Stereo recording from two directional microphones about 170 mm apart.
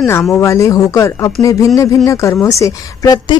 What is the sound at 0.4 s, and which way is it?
A woman's voice, 20° left (ahead or behind).